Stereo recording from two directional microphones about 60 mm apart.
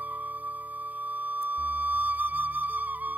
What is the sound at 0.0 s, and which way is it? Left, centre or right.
Music, right.